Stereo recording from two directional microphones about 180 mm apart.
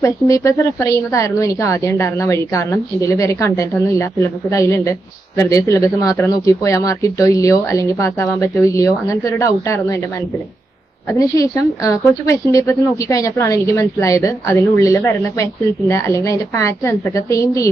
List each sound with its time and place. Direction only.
0.0 s a woman's voice: 15° left (ahead or behind)
11.1 s a woman's voice: 15° left (ahead or behind)